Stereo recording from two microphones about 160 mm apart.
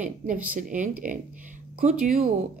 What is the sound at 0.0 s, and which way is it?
Speech, 55° right (ahead or behind).